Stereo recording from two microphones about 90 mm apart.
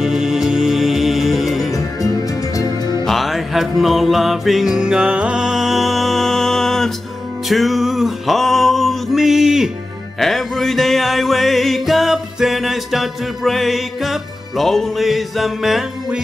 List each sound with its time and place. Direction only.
0.0 s music: 5° right (ahead or behind)
2.5 s music: 40° left (ahead or behind)
3.1 s music: centre (ahead or behind)